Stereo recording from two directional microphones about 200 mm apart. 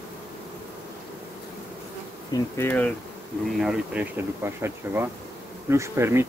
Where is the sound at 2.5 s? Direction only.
10° left (ahead or behind).